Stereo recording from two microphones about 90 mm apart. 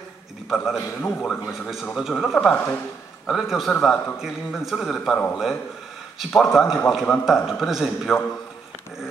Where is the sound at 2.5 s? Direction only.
25° left (ahead or behind).